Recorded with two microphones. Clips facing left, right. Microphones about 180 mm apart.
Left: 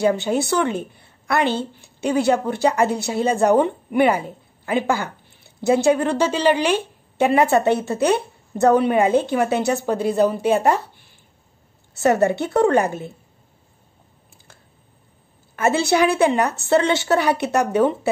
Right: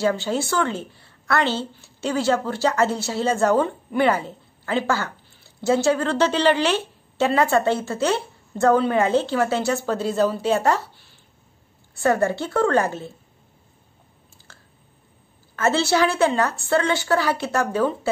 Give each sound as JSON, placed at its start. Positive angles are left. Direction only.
{"t": 0.0, "sound": "a woman's voice", "side_deg": 20}
{"t": 12.0, "sound": "a woman's voice", "side_deg": 20}
{"t": 15.5, "sound": "a woman's voice", "side_deg": 15}